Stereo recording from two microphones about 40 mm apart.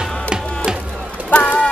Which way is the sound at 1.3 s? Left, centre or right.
Left.